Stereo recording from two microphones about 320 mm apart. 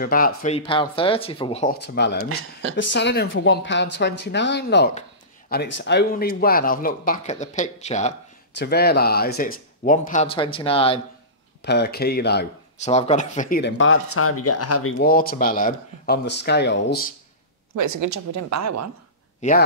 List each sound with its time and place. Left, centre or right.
0.0 s speech: left
1.8 s speech: left
11.6 s speech: left
15.0 s speech: left
17.7 s a woman's voice: right
19.4 s speech: left